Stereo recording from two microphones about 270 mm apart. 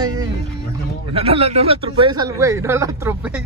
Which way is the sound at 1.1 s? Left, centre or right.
Right.